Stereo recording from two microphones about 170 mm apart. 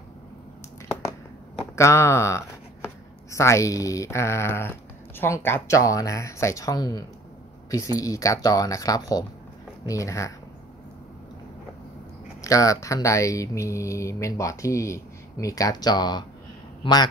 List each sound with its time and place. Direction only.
1.8 s speech: 15° left (ahead or behind)
12.4 s speech: 20° left (ahead or behind)